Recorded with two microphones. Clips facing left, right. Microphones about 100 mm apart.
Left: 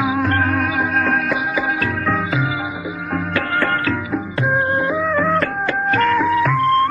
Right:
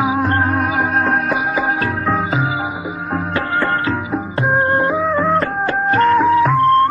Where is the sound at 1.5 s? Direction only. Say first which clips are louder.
Right 2 dB; 35° right (ahead or behind).